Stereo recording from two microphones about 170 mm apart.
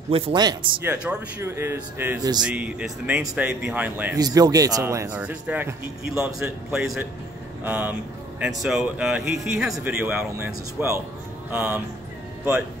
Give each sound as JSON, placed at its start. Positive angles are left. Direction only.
{"t": 0.1, "sound": "speech", "side_deg": -25}
{"t": 0.8, "sound": "speech", "side_deg": -10}
{"t": 4.2, "sound": "speech", "side_deg": -20}
{"t": 5.1, "sound": "speech", "side_deg": -10}